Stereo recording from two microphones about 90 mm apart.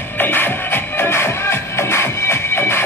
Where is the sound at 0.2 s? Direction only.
25° left (ahead or behind).